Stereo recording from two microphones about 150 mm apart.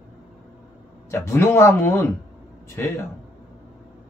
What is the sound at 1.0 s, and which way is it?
A man's voice, 15° left (ahead or behind).